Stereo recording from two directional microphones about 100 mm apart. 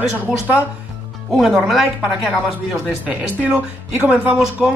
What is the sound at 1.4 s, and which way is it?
Speech, centre (ahead or behind).